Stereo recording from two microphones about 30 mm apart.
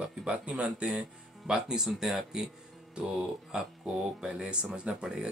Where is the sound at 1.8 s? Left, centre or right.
Centre.